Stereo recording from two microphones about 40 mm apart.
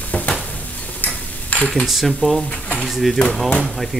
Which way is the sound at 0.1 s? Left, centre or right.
Left.